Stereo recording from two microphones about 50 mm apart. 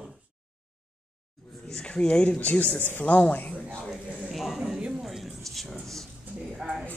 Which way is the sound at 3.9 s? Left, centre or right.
Centre.